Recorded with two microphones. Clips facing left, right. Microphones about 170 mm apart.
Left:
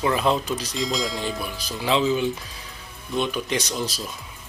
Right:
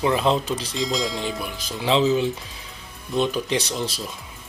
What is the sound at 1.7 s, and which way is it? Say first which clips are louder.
Speech: right 2 dB; 25° right (ahead or behind).